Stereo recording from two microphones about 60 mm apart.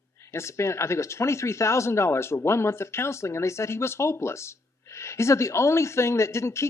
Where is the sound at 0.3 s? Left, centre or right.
Left.